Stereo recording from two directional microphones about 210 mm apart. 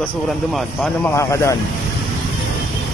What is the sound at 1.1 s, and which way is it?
Speech, 15° left (ahead or behind).